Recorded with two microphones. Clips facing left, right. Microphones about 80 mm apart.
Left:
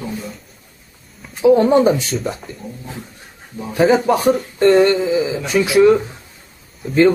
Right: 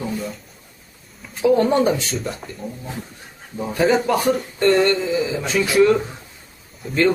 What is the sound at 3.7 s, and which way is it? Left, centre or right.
Speech, centre.